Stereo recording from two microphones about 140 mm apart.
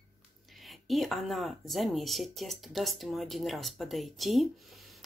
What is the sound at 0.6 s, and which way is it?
Speech, centre (ahead or behind).